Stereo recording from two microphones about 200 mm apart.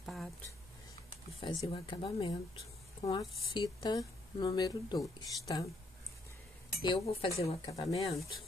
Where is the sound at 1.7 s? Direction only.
25° left (ahead or behind).